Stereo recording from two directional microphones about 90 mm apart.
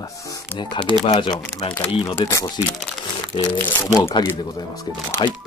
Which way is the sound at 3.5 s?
25° left (ahead or behind).